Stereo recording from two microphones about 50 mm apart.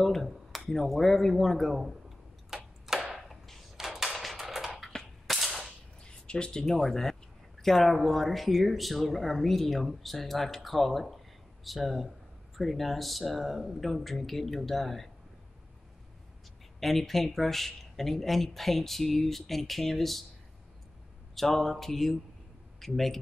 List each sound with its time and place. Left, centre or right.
0.0 s speech: centre
1.8 s a sound: centre
4.8 s cap gun: centre
6.2 s speech: centre
6.6 s speech: centre
16.8 s speech: centre
21.4 s speech: centre